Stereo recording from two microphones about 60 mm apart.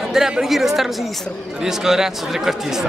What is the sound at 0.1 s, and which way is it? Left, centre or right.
A man's voice, centre.